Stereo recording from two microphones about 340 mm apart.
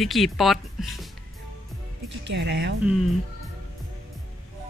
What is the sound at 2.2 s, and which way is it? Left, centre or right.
Speech, right.